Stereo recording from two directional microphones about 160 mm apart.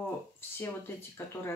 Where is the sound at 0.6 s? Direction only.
15° left (ahead or behind).